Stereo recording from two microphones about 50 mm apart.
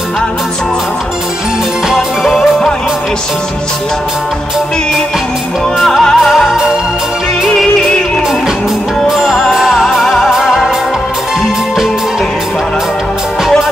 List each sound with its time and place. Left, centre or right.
1.9 s music: centre
5.8 s music: centre
7.4 s music: centre
9.1 s music: centre